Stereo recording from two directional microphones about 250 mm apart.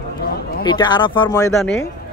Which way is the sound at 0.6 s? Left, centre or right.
Centre.